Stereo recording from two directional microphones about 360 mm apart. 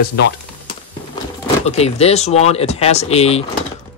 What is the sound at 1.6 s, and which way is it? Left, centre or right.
Speech, centre.